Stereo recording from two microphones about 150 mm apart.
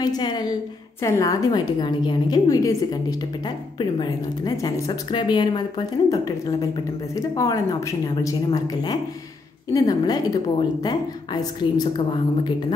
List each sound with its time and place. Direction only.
0.0 s speech: 25° left (ahead or behind)
9.8 s speech: 25° left (ahead or behind)